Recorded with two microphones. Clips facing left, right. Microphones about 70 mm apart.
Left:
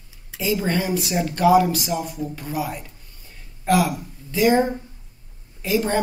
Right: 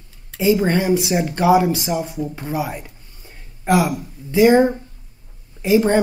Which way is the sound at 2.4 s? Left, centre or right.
Right.